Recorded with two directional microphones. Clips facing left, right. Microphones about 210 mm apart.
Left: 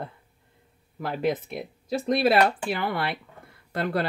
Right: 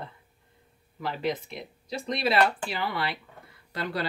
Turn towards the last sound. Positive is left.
turn(degrees=50)  # may be behind; listen again after turning